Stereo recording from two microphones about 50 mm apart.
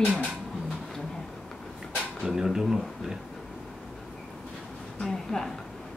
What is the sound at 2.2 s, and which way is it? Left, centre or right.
Speech, centre.